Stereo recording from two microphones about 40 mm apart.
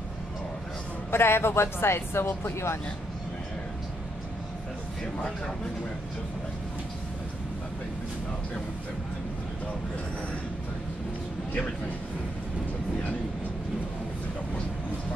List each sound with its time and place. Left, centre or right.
1.1 s speech: left